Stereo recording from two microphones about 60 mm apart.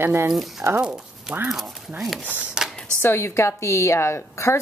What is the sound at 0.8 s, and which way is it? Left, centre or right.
Speech, centre.